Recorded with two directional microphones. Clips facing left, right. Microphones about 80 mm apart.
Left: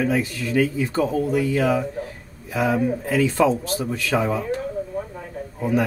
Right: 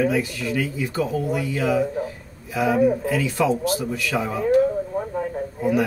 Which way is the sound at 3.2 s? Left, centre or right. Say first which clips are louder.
Left 3 dB; left.